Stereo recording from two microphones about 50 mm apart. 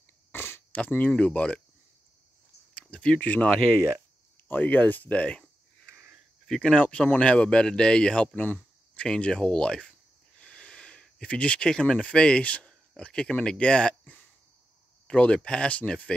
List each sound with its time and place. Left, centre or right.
0.3 s a sound: left
0.7 s speech: left
2.9 s speech: left
4.5 s speech: left; by 8.3 s centre
8.4 s cricket: left
9.0 s speech: centre
10.4 s a sound: centre
11.7 s speech: centre